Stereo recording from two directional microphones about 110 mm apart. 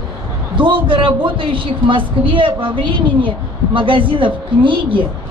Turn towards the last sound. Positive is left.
turn(degrees=-50)  # may be behind; listen again after turning